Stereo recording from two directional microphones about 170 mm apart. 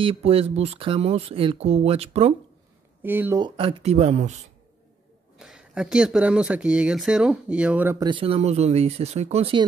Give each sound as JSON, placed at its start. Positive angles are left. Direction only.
{"t": 0.0, "sound": "speech", "side_deg": -35}
{"t": 3.0, "sound": "speech", "side_deg": -10}
{"t": 3.3, "sound": "speech", "side_deg": -30}
{"t": 5.4, "sound": "speech", "side_deg": -5}
{"t": 8.0, "sound": "speech", "side_deg": -30}